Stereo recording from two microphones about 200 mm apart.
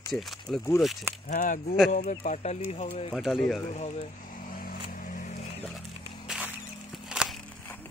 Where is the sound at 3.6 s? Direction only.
35° left (ahead or behind).